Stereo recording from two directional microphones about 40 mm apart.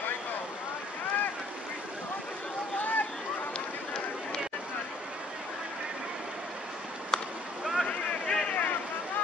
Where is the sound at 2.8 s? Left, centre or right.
Left.